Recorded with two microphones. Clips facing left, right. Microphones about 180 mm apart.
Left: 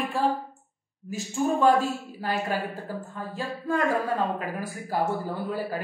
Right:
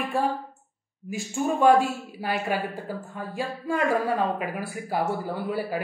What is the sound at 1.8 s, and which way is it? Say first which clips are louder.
Speech: right 2 dB; 40° left (ahead or behind).